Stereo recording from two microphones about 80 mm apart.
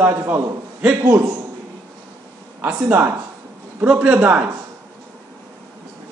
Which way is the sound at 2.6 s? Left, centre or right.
Centre.